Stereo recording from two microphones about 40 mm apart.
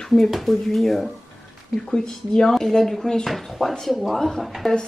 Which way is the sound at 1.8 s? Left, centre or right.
Centre.